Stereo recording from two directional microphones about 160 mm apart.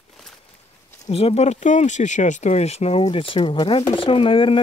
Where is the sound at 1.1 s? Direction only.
40° left (ahead or behind).